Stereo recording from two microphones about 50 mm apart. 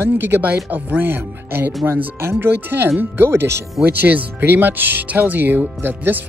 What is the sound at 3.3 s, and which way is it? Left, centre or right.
Speech, right.